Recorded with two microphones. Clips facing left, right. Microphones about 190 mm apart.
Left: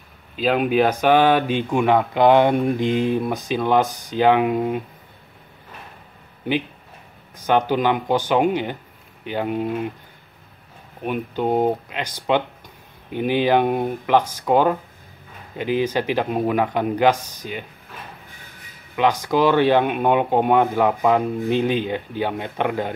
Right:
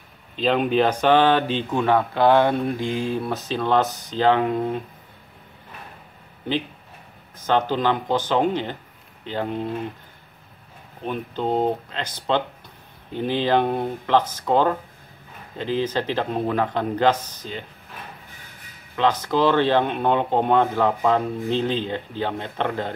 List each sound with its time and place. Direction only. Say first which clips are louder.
0.4 s a man's voice: left 1 dB; 5° left (ahead or behind)
7.4 s a man's voice: left 2 dB; 15° left (ahead or behind)
11.0 s a man's voice: left 3 dB; 15° left (ahead or behind)
18.9 s a man's voice: left 2 dB; 15° left (ahead or behind)